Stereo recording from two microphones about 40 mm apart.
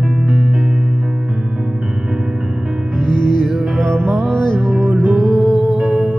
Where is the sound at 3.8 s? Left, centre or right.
Right.